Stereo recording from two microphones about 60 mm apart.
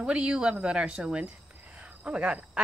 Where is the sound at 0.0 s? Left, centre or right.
Centre.